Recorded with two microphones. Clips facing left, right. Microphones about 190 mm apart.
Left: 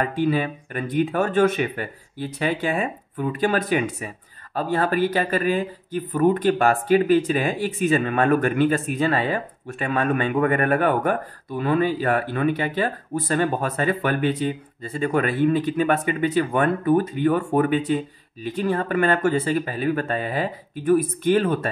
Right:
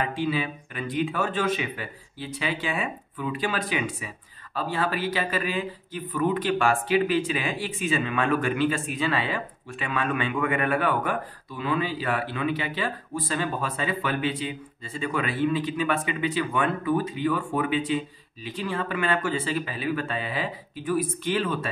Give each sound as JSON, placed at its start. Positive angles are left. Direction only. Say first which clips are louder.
{"t": 0.0, "sound": "speech", "louder": "left 5 dB", "side_deg": 50}